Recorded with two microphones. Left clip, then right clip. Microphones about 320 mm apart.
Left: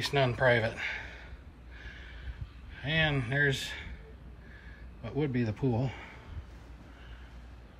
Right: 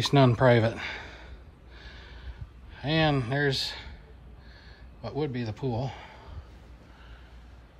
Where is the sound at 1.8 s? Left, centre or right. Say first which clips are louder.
Even; centre.